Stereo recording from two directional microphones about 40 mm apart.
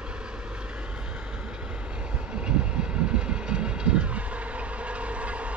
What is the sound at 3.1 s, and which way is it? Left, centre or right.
Train, right.